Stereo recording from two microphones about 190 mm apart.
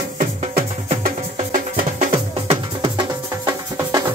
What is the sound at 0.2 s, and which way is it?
Music, 40° right (ahead or behind).